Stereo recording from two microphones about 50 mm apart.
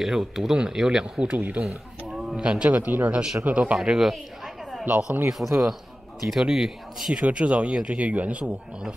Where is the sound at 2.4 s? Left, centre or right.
Centre.